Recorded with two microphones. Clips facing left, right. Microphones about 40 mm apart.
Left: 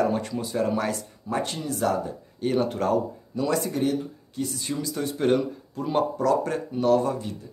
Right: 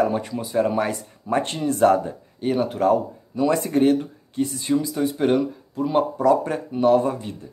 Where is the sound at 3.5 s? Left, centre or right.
Right.